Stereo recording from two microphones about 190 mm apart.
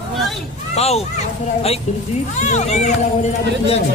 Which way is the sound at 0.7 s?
35° left (ahead or behind).